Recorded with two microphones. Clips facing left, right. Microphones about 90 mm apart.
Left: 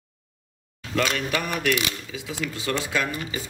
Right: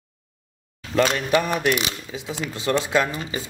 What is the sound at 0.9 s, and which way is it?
Speech, 30° right (ahead or behind).